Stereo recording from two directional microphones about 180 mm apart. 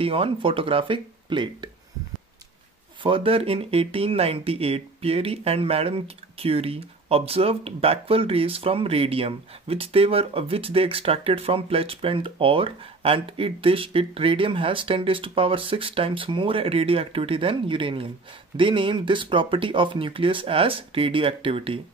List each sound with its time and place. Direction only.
0.0 s speech: 30° right (ahead or behind)
3.0 s speech: 30° right (ahead or behind)